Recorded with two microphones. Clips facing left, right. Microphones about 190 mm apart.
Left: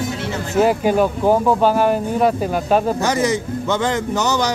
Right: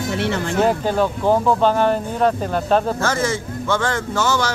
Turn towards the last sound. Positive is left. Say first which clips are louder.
# left 1 dB
turn(degrees=15)  # may be behind; listen again after turning